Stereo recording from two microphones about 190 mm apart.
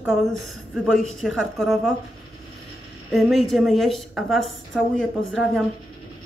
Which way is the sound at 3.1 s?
Centre (ahead or behind).